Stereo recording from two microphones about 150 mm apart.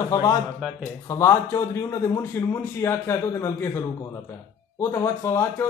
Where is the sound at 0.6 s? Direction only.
10° right (ahead or behind).